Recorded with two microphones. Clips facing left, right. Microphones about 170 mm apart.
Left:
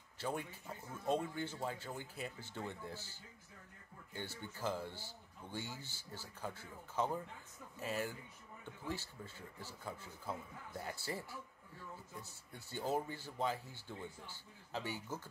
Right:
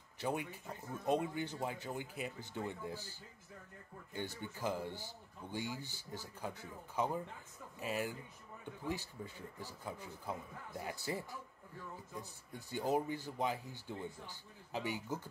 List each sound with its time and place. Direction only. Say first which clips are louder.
0.2 s speech: right 3 dB; 15° right (ahead or behind)